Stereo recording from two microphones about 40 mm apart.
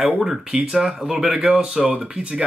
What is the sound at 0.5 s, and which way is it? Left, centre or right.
Speech, right.